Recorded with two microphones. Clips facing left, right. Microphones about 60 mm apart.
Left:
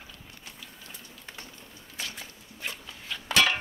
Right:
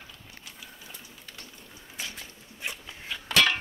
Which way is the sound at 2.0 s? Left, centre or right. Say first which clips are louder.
Left 1 dB; centre.